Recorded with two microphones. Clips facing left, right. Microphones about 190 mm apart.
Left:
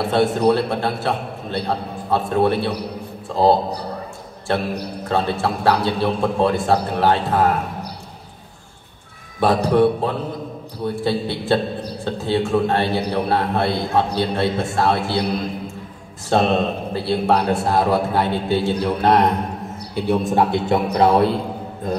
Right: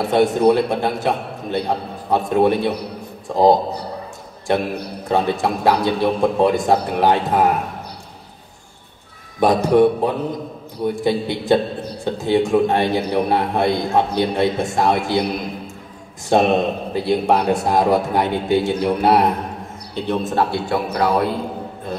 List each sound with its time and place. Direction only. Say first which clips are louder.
0.1 s a man's voice: right 3 dB; 15° right (ahead or behind)
9.4 s a man's voice: right 2 dB; 15° right (ahead or behind)
16.3 s a man's voice: right 2 dB; 15° right (ahead or behind)
20.1 s a man's voice: left 2 dB; 15° left (ahead or behind)